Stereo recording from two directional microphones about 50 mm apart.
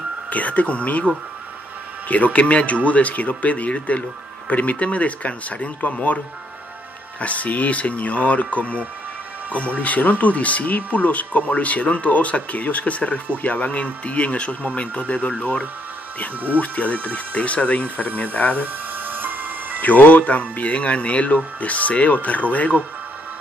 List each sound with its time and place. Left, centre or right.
0.3 s speech: left
2.0 s speech: left
18.9 s music: right
19.8 s speech: left